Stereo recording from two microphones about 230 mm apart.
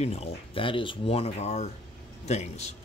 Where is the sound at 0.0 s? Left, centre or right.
Left.